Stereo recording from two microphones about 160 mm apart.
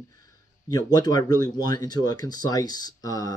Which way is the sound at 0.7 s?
25° left (ahead or behind).